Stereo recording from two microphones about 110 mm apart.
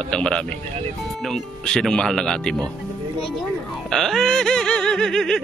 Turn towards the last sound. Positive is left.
turn(degrees=5)  # may be behind; listen again after turning